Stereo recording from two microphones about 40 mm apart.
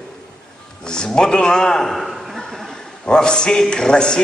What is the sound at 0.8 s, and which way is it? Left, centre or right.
A man's voice, centre.